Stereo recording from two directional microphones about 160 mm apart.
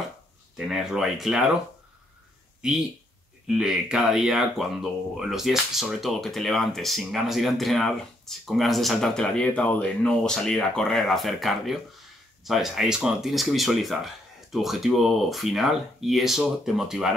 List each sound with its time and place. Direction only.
0.6 s speech: centre (ahead or behind)
3.4 s speech: 5° right (ahead or behind)